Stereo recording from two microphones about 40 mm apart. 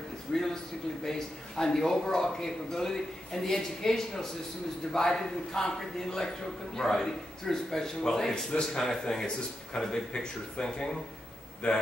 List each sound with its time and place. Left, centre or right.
0.3 s a man's voice: centre
11.6 s speech: left